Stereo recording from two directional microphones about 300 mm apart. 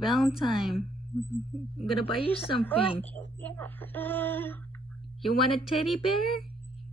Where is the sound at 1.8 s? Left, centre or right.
Centre.